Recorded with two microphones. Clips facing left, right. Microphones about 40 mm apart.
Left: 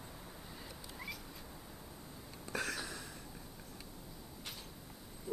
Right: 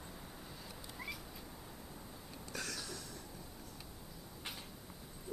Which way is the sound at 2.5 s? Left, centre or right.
Left.